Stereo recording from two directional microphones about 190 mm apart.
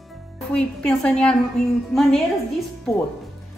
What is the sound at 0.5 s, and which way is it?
Speech, 5° left (ahead or behind).